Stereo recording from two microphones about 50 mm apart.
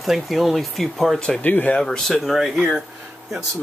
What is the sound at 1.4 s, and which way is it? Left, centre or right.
Speech, left.